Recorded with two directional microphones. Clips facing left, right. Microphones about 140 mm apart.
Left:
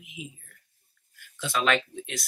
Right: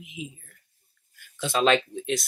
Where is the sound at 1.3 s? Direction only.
25° right (ahead or behind).